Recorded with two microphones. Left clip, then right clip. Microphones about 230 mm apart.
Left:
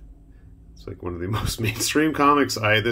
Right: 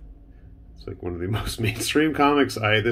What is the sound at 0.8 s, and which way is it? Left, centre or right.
Speech, centre.